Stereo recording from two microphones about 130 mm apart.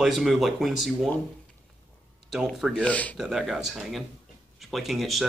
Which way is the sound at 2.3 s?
Centre (ahead or behind).